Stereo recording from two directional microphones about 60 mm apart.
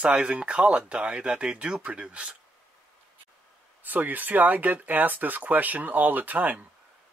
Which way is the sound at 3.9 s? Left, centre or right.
Right.